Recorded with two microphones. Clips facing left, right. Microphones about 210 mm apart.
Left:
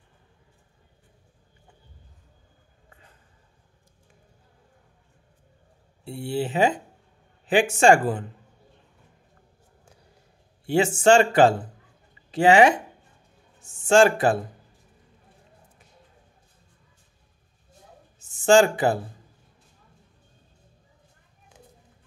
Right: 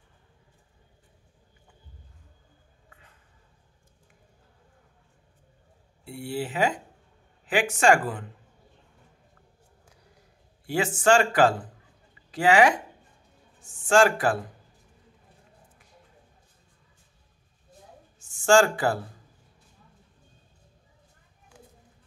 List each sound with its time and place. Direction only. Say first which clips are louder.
6.0 s speech: left 4 dB; 25° left (ahead or behind)
10.7 s speech: left 4 dB; 25° left (ahead or behind)
13.8 s speech: left 3 dB; 25° left (ahead or behind)
18.3 s speech: left 3 dB; 20° left (ahead or behind)